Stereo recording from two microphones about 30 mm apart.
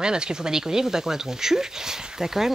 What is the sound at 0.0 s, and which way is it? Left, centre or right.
Speech, right.